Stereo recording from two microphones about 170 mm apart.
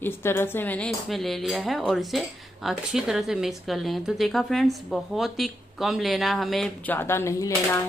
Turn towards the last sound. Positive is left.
turn(degrees=15)  # may be behind; listen again after turning